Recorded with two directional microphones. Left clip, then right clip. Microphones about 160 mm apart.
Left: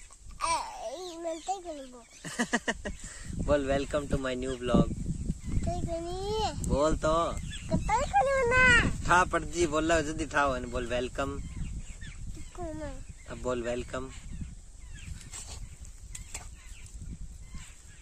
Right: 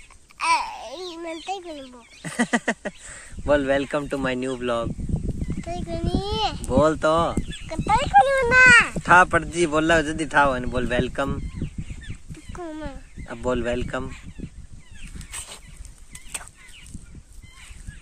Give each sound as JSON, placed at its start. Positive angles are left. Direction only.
{"t": 0.4, "sound": "babbling", "side_deg": 30}
{"t": 0.8, "sound": "chicken", "side_deg": 25}
{"t": 2.2, "sound": "speech", "side_deg": -35}
{"t": 5.7, "sound": "a child's voice", "side_deg": 35}
{"t": 6.7, "sound": "speech", "side_deg": -45}
{"t": 7.8, "sound": "speech", "side_deg": 15}
{"t": 9.0, "sound": "speech", "side_deg": -45}
{"t": 12.5, "sound": "speech", "side_deg": 15}
{"t": 13.3, "sound": "speech", "side_deg": -40}
{"t": 15.3, "sound": "a sound", "side_deg": 0}